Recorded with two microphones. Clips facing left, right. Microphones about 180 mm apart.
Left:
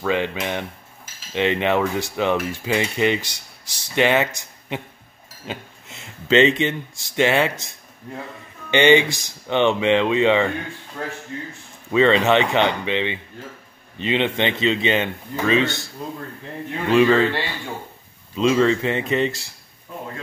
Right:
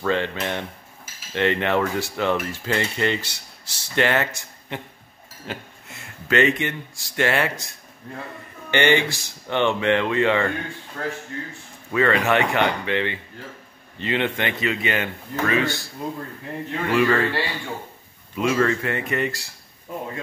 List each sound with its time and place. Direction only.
0.0 s speech: 15° left (ahead or behind)
11.9 s speech: 20° left (ahead or behind)
16.9 s speech: 20° left (ahead or behind)